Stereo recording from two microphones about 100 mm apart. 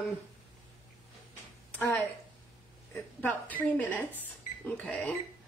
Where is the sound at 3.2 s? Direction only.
15° left (ahead or behind).